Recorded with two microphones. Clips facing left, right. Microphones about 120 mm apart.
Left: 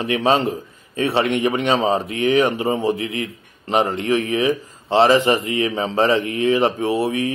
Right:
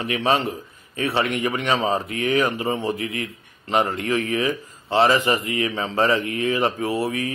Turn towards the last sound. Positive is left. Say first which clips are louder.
# left 4 dB
turn(degrees=25)  # may be behind; listen again after turning